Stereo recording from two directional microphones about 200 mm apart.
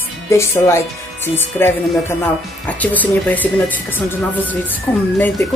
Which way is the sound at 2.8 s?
10° left (ahead or behind).